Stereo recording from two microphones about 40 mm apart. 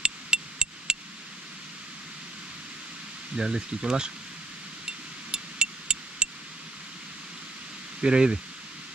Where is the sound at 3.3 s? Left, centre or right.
Centre.